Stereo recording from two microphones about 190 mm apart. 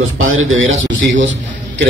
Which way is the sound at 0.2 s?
90° right.